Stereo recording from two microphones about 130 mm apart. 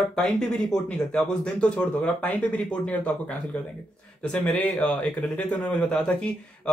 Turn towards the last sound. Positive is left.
turn(degrees=5)  # may be behind; listen again after turning